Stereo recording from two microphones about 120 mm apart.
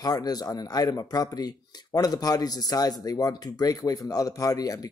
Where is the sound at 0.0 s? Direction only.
35° left (ahead or behind).